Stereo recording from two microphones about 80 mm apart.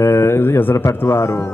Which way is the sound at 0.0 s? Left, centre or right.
Left.